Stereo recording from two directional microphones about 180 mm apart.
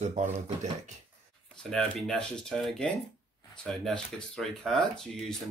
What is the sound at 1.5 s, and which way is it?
Speech, 5° left (ahead or behind).